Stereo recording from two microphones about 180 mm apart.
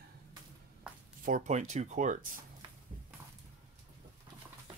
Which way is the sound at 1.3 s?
45° right (ahead or behind).